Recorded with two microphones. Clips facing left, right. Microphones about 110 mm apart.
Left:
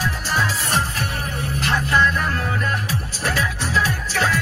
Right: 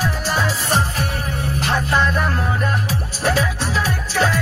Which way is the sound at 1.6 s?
25° right (ahead or behind).